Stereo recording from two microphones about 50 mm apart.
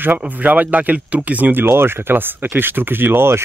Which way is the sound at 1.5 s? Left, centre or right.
Right.